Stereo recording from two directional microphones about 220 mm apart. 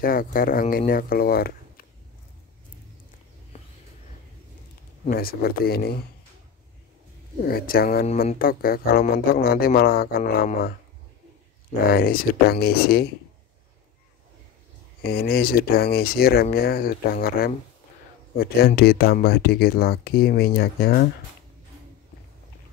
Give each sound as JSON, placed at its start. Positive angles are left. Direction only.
{"t": 0.0, "sound": "speech", "side_deg": 40}
{"t": 5.1, "sound": "speech", "side_deg": 45}
{"t": 7.4, "sound": "speech", "side_deg": 45}
{"t": 11.9, "sound": "speech", "side_deg": 40}
{"t": 15.0, "sound": "speech", "side_deg": 45}